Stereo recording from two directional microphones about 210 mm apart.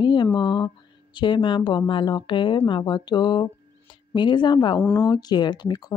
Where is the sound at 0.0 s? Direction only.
20° left (ahead or behind).